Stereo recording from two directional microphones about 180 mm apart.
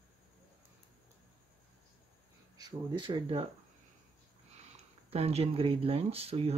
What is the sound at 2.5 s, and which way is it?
Speech, 20° right (ahead or behind).